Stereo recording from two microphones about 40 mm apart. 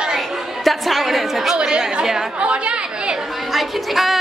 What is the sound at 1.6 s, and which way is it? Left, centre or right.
Speech, right.